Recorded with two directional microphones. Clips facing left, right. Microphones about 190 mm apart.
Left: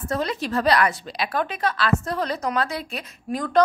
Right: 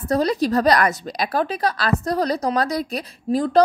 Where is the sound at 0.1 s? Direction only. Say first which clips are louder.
Right 6 dB; 35° right (ahead or behind).